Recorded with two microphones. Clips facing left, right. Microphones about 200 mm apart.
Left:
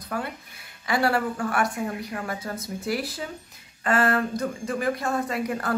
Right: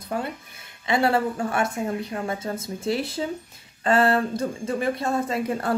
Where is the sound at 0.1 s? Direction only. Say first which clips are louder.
Right 2 dB; 25° right (ahead or behind).